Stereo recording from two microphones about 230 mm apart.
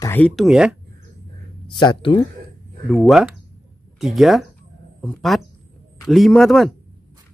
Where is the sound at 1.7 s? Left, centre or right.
Centre.